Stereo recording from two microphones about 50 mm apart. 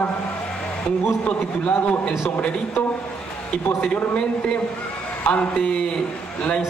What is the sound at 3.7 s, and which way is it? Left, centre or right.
Speech, left.